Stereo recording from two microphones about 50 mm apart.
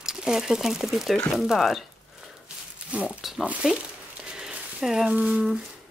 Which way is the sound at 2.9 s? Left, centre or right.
Right.